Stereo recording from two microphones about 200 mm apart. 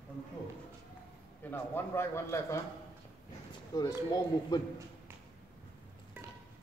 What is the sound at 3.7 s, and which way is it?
Speech, 20° left (ahead or behind).